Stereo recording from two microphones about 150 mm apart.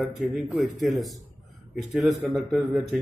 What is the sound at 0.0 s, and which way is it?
A man's voice, centre (ahead or behind).